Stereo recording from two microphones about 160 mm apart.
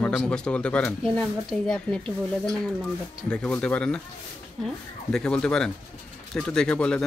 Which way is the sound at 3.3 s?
5° left (ahead or behind).